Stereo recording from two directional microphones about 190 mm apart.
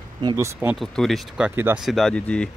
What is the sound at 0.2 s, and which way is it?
Speech, 20° right (ahead or behind).